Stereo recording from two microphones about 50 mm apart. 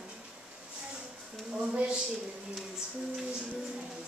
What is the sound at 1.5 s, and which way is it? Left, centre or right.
Speech, centre.